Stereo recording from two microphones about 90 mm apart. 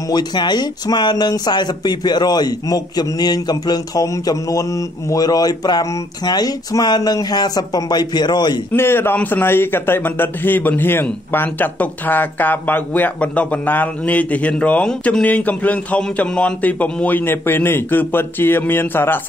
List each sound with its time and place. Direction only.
0.1 s speech: 50° left (ahead or behind)
8.7 s a man's voice: 25° left (ahead or behind)